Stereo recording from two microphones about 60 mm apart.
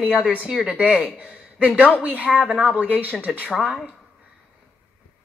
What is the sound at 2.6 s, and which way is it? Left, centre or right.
Speech, centre.